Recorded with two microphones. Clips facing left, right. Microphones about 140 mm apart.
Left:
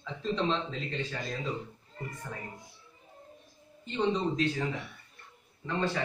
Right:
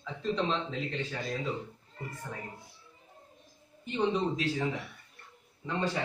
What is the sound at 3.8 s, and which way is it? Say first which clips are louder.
A man's voice: even; 10° right (ahead or behind).